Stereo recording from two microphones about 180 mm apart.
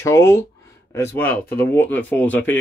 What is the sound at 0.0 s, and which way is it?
Speech, 15° left (ahead or behind).